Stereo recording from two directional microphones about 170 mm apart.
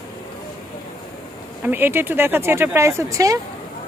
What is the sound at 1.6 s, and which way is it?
Speech, 10° right (ahead or behind).